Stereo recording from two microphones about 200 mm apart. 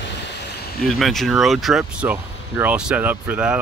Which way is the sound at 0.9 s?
Centre (ahead or behind).